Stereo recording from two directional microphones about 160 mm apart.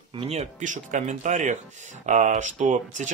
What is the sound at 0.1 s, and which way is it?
Speech, 40° right (ahead or behind).